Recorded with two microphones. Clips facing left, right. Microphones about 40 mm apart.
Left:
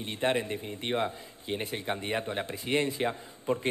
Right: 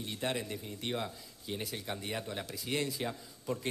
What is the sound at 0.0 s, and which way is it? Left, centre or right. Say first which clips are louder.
A man's voice: left 7 dB; left.